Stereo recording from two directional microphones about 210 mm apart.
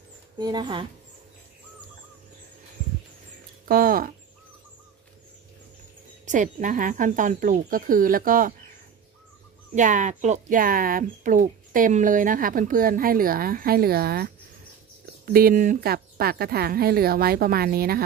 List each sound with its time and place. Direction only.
0.4 s speech: 20° right (ahead or behind)
3.6 s a sound: 45° right (ahead or behind)
6.2 s speech: 35° right (ahead or behind)
9.8 s speech: 35° right (ahead or behind)